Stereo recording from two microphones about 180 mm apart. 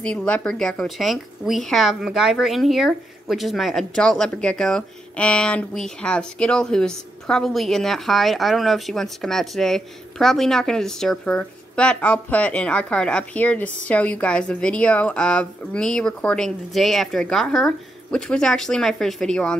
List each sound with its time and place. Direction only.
0.0 s a woman's voice: 5° left (ahead or behind)